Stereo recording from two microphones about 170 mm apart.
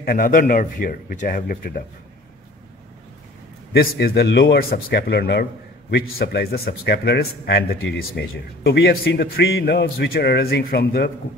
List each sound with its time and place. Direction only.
0.0 s speech: 55° left (ahead or behind)
3.7 s speech: 65° left (ahead or behind)